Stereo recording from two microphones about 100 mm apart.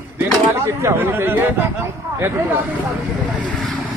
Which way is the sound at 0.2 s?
25° right (ahead or behind).